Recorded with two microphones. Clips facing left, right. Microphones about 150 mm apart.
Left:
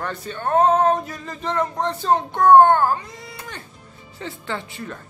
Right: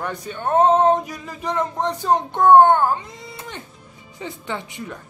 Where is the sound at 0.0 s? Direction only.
15° right (ahead or behind).